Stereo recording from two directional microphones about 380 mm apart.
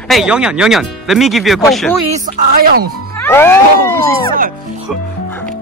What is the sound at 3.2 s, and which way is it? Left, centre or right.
Music, centre.